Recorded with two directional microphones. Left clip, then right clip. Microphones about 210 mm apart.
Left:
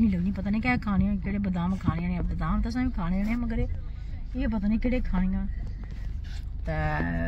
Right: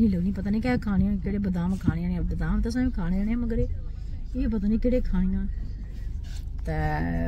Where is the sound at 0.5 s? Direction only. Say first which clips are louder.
Even; 10° right (ahead or behind).